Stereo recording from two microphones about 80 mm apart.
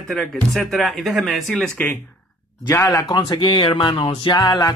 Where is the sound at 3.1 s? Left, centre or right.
Left.